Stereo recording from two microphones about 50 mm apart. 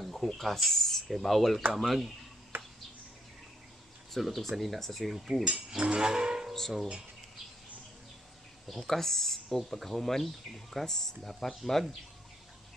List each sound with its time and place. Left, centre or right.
0.0 s speech: centre
4.1 s speech: centre
5.4 s livestock: centre
8.6 s speech: centre